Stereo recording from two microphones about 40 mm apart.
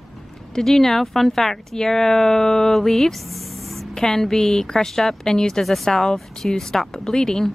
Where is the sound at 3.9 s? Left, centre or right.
Centre.